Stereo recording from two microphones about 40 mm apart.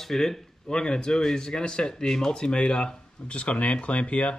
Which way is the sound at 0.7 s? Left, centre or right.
Centre.